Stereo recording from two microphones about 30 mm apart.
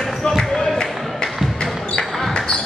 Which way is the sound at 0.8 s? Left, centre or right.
Centre.